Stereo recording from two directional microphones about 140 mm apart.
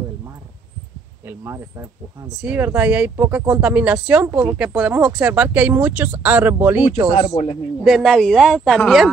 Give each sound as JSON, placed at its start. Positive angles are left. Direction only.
{"t": 1.2, "sound": "speech", "side_deg": -20}
{"t": 7.8, "sound": "speech", "side_deg": 0}